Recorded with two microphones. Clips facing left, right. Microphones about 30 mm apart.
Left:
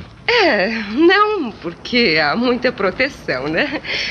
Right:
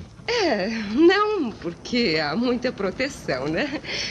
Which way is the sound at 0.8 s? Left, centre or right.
Left.